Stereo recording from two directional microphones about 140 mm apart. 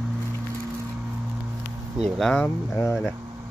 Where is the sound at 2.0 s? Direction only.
5° left (ahead or behind).